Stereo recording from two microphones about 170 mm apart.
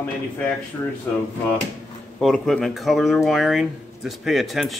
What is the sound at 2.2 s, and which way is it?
Speech, centre (ahead or behind).